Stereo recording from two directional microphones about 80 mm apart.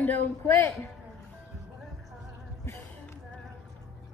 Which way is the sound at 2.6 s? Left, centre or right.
Left.